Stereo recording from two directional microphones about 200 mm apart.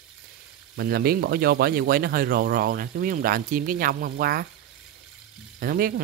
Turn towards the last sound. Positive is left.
turn(degrees=-45)  # may be behind; listen again after turning